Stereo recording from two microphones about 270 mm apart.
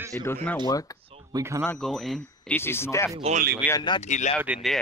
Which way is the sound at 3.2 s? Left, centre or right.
Right.